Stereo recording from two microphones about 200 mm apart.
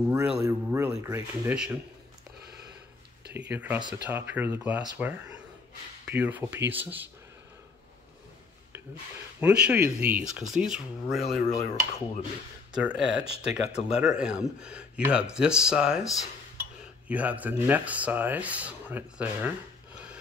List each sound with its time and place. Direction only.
0.1 s speech: 10° right (ahead or behind)
3.3 s speech: 10° right (ahead or behind)
9.4 s speech: 5° right (ahead or behind)
11.2 s dishes: 35° left (ahead or behind)
12.7 s speech: 5° right (ahead or behind)